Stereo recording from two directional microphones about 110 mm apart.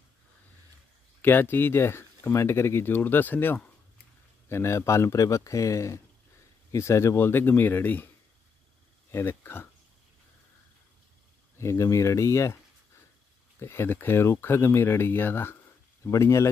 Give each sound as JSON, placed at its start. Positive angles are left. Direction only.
{"t": 1.2, "sound": "speech", "side_deg": 20}
{"t": 9.1, "sound": "speech", "side_deg": 20}
{"t": 11.5, "sound": "speech", "side_deg": 25}
{"t": 13.6, "sound": "speech", "side_deg": 20}